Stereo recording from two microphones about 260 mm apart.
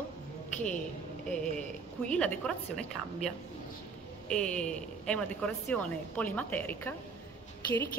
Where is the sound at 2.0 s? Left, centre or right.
Centre.